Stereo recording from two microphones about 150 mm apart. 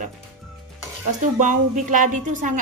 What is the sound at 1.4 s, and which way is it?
Speech, 55° right (ahead or behind).